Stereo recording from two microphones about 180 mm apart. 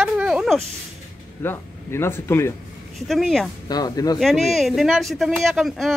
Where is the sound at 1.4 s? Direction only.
15° left (ahead or behind).